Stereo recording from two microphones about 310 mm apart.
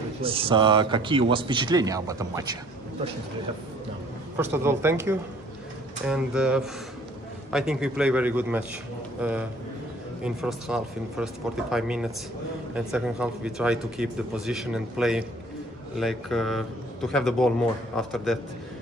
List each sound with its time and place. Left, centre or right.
0.2 s speech: centre
4.4 s speech: centre